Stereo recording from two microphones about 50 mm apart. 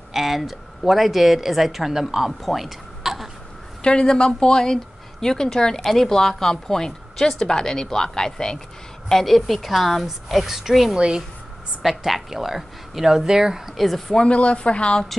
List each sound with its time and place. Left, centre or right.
0.1 s speech: centre
3.8 s speech: centre
9.1 s a woman's voice: centre
11.0 s speech: centre
11.8 s a woman's voice: centre
13.7 s a woman's voice: centre
14.2 s speech: left